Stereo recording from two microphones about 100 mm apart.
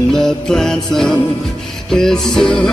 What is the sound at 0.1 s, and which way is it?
Music, 5° left (ahead or behind).